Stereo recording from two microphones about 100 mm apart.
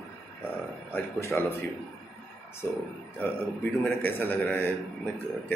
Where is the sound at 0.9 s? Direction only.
25° left (ahead or behind).